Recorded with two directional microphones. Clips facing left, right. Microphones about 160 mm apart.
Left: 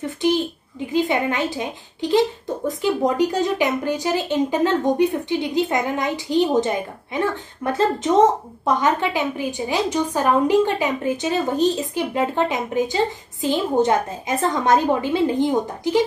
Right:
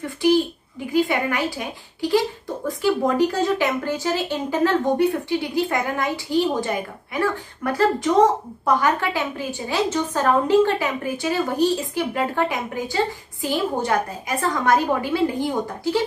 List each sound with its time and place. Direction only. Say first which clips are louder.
0.9 s a woman's voice: left 1 dB; 20° left (ahead or behind)